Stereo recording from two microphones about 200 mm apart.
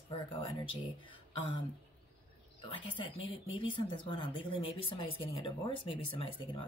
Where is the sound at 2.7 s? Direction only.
25° left (ahead or behind).